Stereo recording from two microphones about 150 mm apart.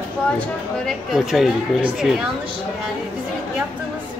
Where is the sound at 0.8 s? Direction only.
Centre (ahead or behind).